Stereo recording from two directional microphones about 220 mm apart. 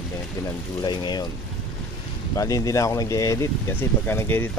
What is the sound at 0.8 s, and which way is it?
Speech, 20° left (ahead or behind).